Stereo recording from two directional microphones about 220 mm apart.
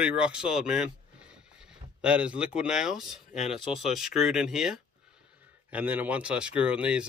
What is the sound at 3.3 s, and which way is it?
Speech, 30° left (ahead or behind).